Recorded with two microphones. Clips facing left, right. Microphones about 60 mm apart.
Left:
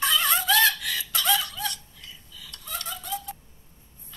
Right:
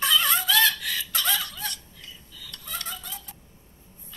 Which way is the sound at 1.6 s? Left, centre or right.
Right.